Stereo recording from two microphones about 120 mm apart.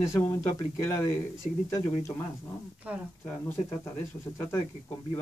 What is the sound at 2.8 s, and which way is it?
Speech, 10° right (ahead or behind).